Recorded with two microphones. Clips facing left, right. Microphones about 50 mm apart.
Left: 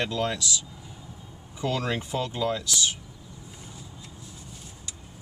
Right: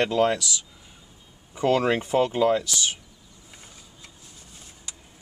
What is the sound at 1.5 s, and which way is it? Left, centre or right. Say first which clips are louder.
Speech: right 7 dB; right.